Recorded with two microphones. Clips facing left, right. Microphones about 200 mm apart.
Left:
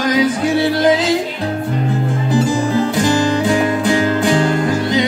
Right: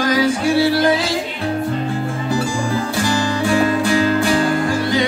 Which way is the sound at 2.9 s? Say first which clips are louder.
Left 4 dB; 20° left (ahead or behind).